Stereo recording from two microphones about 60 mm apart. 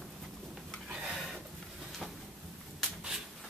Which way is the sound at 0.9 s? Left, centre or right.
Centre.